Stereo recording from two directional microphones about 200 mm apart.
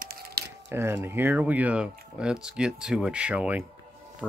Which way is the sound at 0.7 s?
10° right (ahead or behind).